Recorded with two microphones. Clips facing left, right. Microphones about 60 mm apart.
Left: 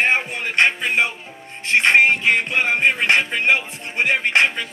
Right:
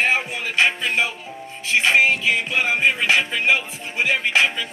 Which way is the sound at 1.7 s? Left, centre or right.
Left.